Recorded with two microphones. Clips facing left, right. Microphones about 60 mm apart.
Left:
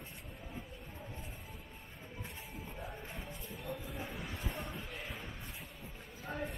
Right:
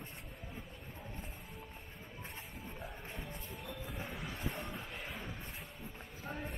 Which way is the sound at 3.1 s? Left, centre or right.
Centre.